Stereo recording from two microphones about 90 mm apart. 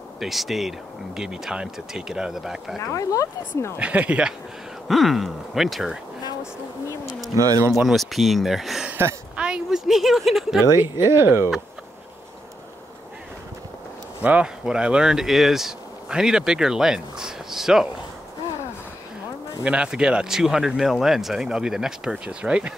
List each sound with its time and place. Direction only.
0.2 s speech: centre (ahead or behind)
2.8 s speech: 35° left (ahead or behind)
3.7 s speech: 15° right (ahead or behind)
4.8 s speech: centre (ahead or behind)
7.3 s speech: 40° right (ahead or behind)
7.7 s speech: centre (ahead or behind)
9.4 s a sound: 10° right (ahead or behind)
10.7 s speech: 30° right (ahead or behind)
14.2 s speech: 10° right (ahead or behind)
19.6 s speech: 10° right (ahead or behind)